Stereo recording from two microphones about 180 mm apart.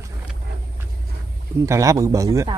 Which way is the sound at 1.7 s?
20° right (ahead or behind).